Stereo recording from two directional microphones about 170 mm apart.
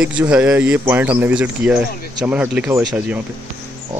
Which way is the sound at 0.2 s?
5° right (ahead or behind).